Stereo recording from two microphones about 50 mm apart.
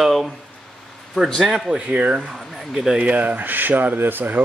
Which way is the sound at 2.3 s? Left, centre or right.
Centre.